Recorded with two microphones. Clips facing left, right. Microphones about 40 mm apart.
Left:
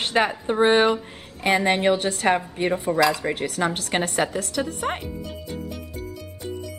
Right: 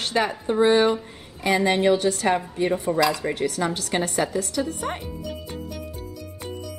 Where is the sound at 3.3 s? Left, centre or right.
Left.